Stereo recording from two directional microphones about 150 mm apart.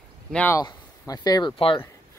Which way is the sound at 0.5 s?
25° left (ahead or behind).